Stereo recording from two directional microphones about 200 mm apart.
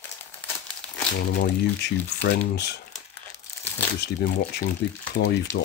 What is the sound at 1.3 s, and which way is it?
Speech, 55° left (ahead or behind).